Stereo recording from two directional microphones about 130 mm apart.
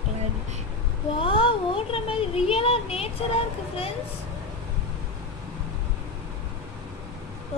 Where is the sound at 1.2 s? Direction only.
40° left (ahead or behind).